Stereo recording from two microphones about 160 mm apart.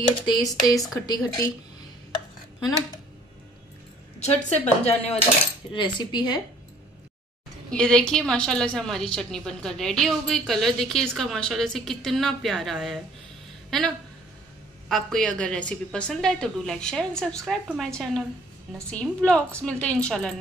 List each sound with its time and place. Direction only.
0.3 s speech: 25° left (ahead or behind)
4.2 s a woman's voice: 40° left (ahead or behind)
5.7 s speech: 30° left (ahead or behind)
7.7 s a woman's voice: 5° left (ahead or behind)